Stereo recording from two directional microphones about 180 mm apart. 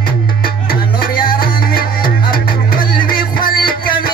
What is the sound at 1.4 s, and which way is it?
Music, 55° left (ahead or behind).